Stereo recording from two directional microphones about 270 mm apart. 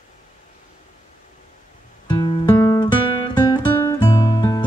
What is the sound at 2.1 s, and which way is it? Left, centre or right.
Guitar, centre.